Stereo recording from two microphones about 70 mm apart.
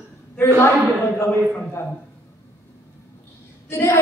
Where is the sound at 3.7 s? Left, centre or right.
Left.